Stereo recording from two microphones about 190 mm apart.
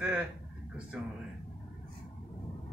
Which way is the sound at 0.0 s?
5° right (ahead or behind).